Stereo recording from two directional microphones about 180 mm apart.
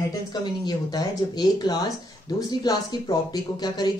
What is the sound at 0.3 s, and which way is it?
Speech, 25° left (ahead or behind).